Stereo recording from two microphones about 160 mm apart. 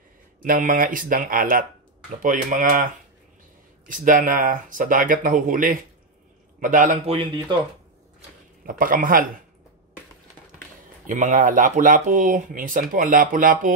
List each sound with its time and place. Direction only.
0.4 s speech: 55° right (ahead or behind)
7.1 s speech: 35° right (ahead or behind)
8.6 s speech: 60° right (ahead or behind)
11.1 s speech: 50° right (ahead or behind)